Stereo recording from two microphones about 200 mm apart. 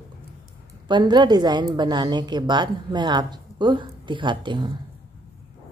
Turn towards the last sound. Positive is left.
turn(degrees=-20)  # may be behind; listen again after turning